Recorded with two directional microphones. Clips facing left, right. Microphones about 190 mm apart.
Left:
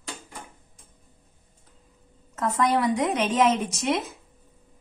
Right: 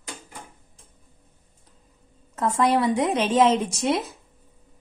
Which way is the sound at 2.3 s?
30° right (ahead or behind).